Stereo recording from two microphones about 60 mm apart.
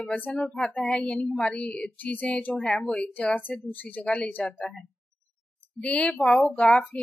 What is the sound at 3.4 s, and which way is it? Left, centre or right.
Speech, left.